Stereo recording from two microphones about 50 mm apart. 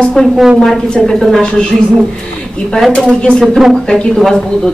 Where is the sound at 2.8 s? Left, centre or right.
Centre.